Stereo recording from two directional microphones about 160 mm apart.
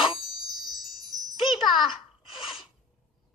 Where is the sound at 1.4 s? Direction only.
30° left (ahead or behind).